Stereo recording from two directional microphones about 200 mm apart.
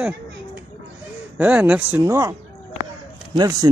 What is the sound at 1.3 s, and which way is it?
Speech, 5° right (ahead or behind).